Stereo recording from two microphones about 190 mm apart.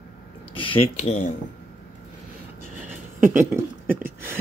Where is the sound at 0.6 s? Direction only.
30° left (ahead or behind).